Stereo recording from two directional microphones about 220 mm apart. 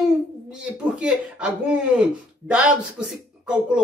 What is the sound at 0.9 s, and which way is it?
Speech, 5° right (ahead or behind).